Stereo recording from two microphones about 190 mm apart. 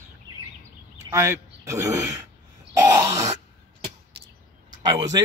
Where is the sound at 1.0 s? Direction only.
15° right (ahead or behind).